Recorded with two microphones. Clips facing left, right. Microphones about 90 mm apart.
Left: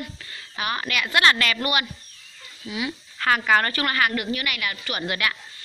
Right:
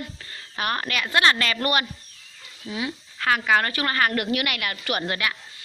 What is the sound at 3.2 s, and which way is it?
Speech, centre (ahead or behind).